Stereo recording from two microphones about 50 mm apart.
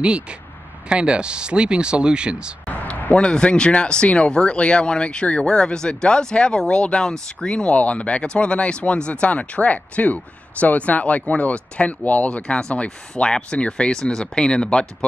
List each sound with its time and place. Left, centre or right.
0.8 s speech: right
2.7 s a sound: left
3.2 s speech: centre